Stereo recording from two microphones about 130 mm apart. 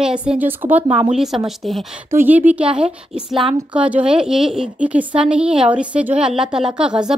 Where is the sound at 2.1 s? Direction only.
15° right (ahead or behind).